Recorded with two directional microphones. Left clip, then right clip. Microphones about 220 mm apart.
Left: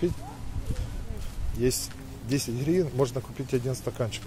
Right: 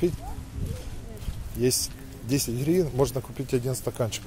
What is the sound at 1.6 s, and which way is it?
Speech, 20° right (ahead or behind).